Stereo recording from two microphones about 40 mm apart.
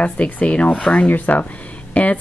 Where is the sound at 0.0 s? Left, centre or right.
Left.